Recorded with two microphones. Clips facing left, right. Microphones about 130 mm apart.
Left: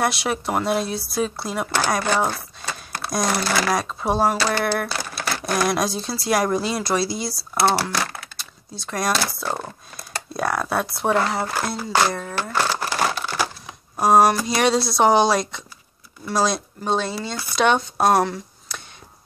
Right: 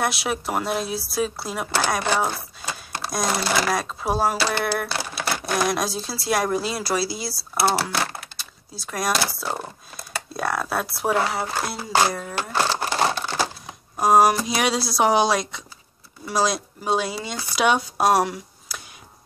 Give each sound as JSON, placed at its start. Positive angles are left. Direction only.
{"t": 0.0, "sound": "speech", "side_deg": 0}
{"t": 7.9, "sound": "speech", "side_deg": -30}
{"t": 8.4, "sound": "speech", "side_deg": -5}
{"t": 12.7, "sound": "crumpling", "side_deg": -25}
{"t": 13.9, "sound": "speech", "side_deg": 0}